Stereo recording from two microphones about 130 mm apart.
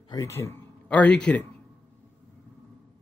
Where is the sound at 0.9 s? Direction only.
10° left (ahead or behind).